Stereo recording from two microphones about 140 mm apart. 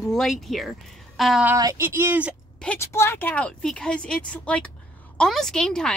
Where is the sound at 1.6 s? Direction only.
20° right (ahead or behind).